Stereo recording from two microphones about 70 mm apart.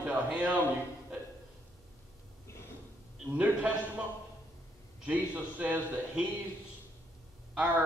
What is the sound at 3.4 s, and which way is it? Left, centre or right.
Speech, centre.